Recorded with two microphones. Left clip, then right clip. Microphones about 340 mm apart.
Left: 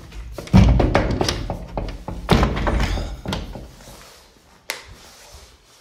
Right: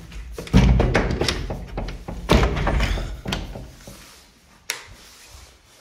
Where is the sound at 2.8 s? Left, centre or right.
Centre.